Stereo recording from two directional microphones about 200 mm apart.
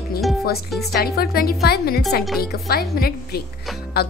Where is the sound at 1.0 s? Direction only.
50° left (ahead or behind).